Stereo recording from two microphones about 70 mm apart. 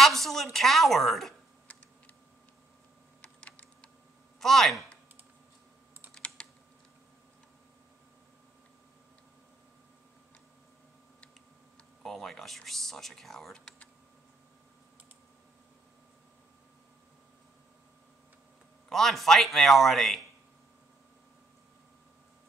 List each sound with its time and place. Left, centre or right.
0.0 s speech: centre
3.2 s computer keyboard: centre
4.4 s speech: centre
6.1 s typing: centre
12.0 s speech: centre
18.9 s speech: centre